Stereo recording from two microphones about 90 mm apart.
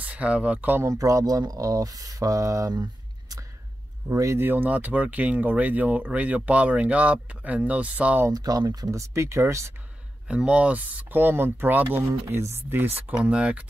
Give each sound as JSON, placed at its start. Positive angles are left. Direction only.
{"t": 0.0, "sound": "speech", "side_deg": -15}
{"t": 0.8, "sound": "speech", "side_deg": -35}
{"t": 2.7, "sound": "a sound", "side_deg": -45}
{"t": 4.1, "sound": "speech", "side_deg": -35}
{"t": 8.3, "sound": "speech", "side_deg": -45}
{"t": 10.2, "sound": "speech", "side_deg": -10}
{"t": 12.1, "sound": "speech", "side_deg": -30}
{"t": 13.1, "sound": "speech", "side_deg": -10}